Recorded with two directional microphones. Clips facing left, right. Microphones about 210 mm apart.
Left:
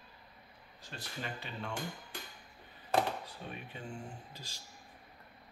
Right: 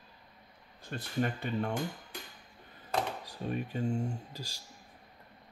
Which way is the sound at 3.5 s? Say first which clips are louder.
Right 15 dB; 40° right (ahead or behind).